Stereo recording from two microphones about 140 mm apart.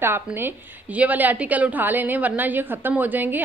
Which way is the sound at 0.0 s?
15° right (ahead or behind).